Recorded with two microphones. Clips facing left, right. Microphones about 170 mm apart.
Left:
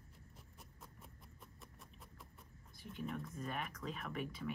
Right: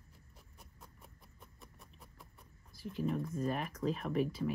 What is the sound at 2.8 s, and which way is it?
Speech, 35° right (ahead or behind).